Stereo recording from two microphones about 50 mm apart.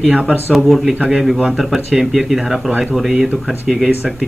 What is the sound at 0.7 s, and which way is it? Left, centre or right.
Speech, centre.